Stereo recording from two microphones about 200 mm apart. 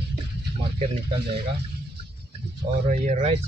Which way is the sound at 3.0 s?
35° right (ahead or behind).